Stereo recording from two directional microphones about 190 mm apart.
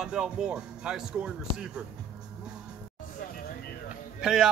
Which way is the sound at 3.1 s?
50° left (ahead or behind).